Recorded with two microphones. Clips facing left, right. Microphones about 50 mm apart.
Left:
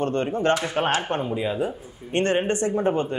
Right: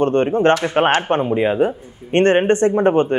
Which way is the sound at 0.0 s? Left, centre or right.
Right.